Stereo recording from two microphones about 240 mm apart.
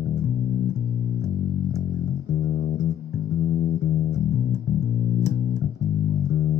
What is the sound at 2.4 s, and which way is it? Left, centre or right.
Music, left.